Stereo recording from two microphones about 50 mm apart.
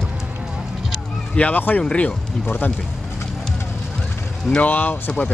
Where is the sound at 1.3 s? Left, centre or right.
Left.